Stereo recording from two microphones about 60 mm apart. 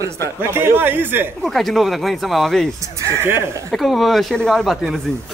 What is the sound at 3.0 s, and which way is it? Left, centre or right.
Speech, right.